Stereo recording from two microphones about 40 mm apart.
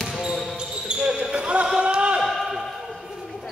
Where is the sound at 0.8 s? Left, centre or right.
Right.